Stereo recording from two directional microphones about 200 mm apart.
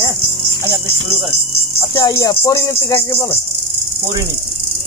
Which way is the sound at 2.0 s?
15° left (ahead or behind).